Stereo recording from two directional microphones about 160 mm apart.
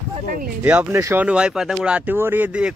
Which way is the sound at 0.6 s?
10° right (ahead or behind).